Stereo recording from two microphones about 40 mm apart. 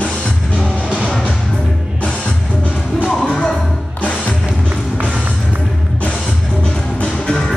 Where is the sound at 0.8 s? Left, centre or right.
Right.